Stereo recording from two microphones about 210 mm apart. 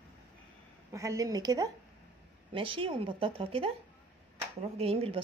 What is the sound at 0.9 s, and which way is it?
A woman's voice, 15° right (ahead or behind).